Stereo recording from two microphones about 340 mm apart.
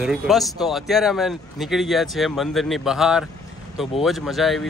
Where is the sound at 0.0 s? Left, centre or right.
Centre.